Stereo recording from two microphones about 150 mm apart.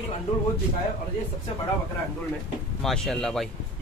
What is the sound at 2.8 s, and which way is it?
Speech, 5° left (ahead or behind).